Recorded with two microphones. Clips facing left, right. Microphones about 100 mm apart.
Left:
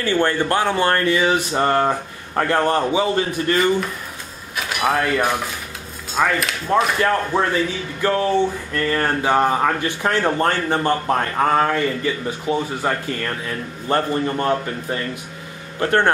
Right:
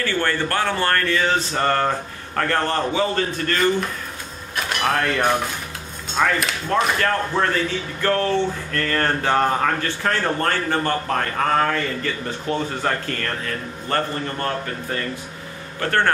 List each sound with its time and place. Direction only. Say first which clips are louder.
0.0 s speech: left 4 dB; 15° left (ahead or behind)
6.7 s a man's voice: left 3 dB; 15° left (ahead or behind)